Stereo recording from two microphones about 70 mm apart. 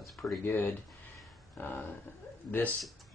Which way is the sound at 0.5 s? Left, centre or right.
Left.